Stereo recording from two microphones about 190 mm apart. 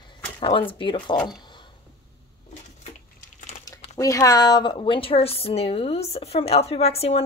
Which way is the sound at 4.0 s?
15° left (ahead or behind).